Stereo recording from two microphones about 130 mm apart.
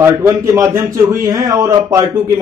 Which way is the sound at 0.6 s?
20° right (ahead or behind).